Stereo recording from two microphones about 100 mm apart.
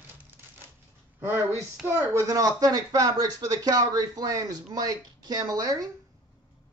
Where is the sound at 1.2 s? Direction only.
25° right (ahead or behind); by 5.9 s 40° right (ahead or behind).